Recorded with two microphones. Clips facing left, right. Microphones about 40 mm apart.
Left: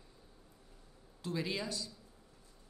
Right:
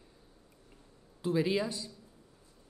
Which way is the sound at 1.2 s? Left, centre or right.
Centre.